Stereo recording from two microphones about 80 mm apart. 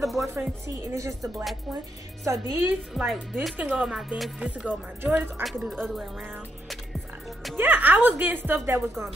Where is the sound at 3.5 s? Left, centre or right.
Centre.